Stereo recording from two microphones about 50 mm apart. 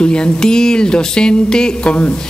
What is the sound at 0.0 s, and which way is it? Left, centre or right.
Speech, centre.